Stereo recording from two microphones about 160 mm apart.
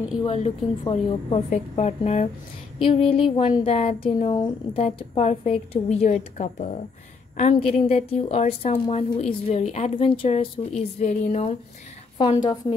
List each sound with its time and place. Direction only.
0.2 s a woman's voice: 35° left (ahead or behind)
12.2 s a woman's voice: 30° left (ahead or behind)